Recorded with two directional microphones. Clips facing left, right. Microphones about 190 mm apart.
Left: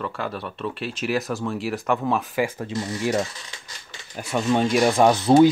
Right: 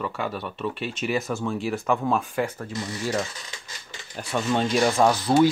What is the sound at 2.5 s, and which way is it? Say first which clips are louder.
Speech: left 4 dB; 15° left (ahead or behind).